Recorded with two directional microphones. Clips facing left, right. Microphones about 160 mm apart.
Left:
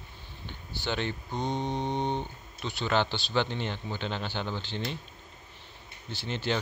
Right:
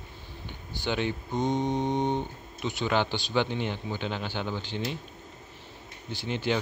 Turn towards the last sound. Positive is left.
turn(degrees=-15)  # may be behind; listen again after turning